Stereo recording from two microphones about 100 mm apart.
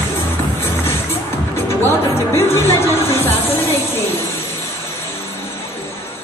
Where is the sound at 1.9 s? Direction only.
25° left (ahead or behind).